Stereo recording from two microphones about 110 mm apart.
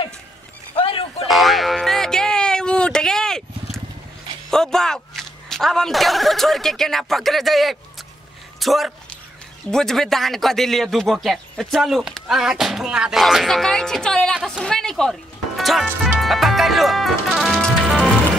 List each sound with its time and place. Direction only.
0.7 s a sound: 55° left (ahead or behind)
1.2 s music: centre (ahead or behind)
4.5 s speech: 5° left (ahead or behind)
16.2 s music: centre (ahead or behind)